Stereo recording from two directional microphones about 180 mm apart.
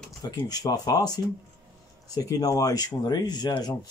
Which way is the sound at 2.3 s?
20° left (ahead or behind).